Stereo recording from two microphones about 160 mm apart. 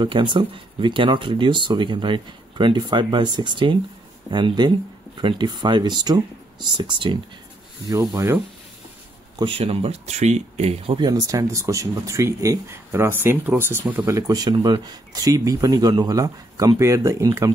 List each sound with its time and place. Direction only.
0.0 s speech: 30° right (ahead or behind)
7.9 s speech: 20° right (ahead or behind)
9.4 s speech: 35° right (ahead or behind)
11.1 s speech: 20° right (ahead or behind)